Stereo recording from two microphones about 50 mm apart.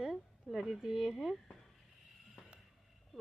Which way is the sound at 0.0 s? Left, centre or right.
Centre.